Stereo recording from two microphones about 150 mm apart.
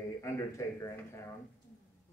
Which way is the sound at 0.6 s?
20° left (ahead or behind).